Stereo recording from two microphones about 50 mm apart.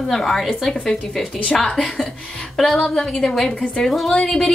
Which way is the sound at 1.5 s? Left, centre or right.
Centre.